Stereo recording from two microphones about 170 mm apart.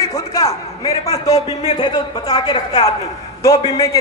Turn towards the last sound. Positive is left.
turn(degrees=20)  # may be behind; listen again after turning